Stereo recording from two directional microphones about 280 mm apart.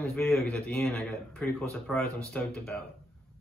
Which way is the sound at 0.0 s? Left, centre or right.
Centre.